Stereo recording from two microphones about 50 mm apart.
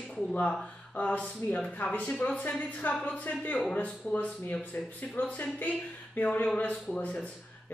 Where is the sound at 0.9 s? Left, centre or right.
Left.